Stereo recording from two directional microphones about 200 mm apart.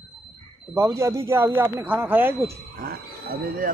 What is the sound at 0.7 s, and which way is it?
Speech, 15° right (ahead or behind).